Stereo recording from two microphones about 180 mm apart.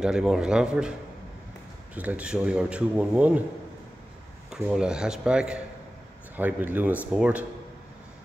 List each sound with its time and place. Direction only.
0.0 s speech: 5° right (ahead or behind)
2.0 s speech: 10° right (ahead or behind)
4.5 s speech: 5° right (ahead or behind)